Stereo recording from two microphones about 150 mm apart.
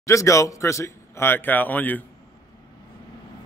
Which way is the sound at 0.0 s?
20° left (ahead or behind).